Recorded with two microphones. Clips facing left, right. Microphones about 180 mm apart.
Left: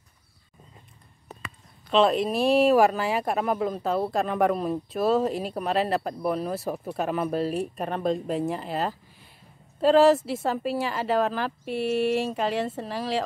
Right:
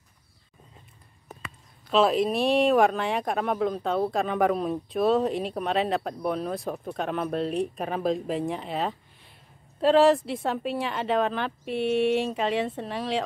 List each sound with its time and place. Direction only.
1.4 s speech: centre (ahead or behind)